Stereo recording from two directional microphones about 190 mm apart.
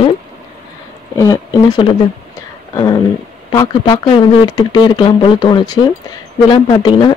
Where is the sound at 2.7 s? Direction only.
20° left (ahead or behind).